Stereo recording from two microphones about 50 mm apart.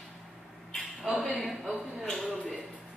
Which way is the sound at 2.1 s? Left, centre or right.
Centre.